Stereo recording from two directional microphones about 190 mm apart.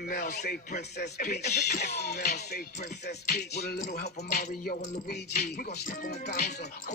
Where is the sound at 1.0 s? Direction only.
55° left (ahead or behind).